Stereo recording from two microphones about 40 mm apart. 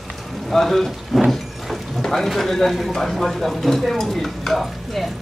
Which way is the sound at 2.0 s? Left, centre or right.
Centre.